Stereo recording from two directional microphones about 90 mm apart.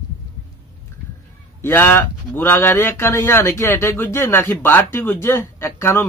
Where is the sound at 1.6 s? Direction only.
25° left (ahead or behind).